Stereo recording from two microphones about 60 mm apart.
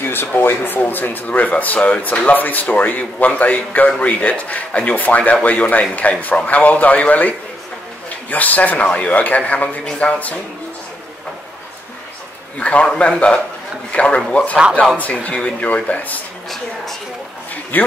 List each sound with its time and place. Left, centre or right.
0.0 s speech: left
12.5 s speech: left
17.7 s speech: left